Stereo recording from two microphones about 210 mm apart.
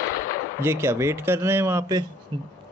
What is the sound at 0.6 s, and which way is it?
Speech, 10° right (ahead or behind).